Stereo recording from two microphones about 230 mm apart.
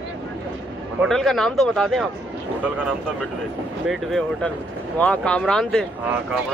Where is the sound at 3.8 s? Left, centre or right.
Centre.